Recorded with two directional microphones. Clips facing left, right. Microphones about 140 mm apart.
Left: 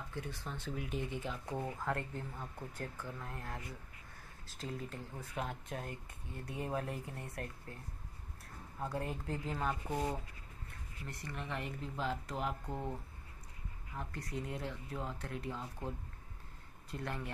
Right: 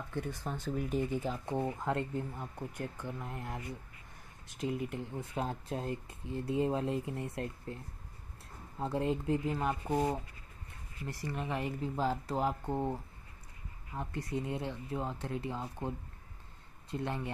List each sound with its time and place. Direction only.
0.1 s speech: 50° right (ahead or behind)
1.4 s speech: 25° right (ahead or behind)
9.8 s speech: 25° right (ahead or behind)
13.9 s speech: 25° right (ahead or behind)
16.9 s speech: 25° right (ahead or behind)